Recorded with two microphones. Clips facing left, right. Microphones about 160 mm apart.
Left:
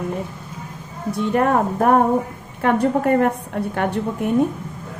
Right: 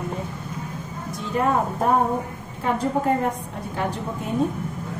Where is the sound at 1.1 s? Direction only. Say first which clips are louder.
Left 4 dB; 65° left (ahead or behind).